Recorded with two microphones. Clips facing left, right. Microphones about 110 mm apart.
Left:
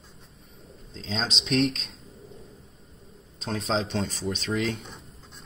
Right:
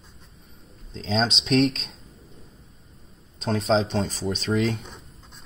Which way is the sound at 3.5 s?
30° right (ahead or behind).